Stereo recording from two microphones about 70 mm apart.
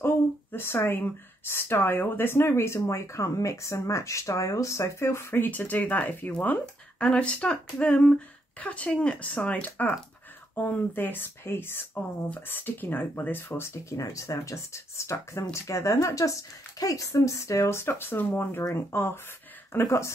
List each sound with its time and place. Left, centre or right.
0.0 s speech: left
13.6 s speech: left